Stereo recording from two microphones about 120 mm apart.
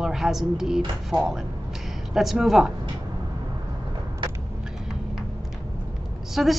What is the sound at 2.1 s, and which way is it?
Speech, centre (ahead or behind).